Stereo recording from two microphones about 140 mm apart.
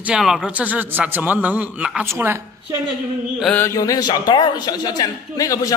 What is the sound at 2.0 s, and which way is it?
Speech, 20° right (ahead or behind).